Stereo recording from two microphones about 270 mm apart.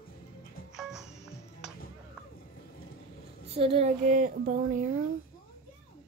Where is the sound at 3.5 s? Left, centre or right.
Right.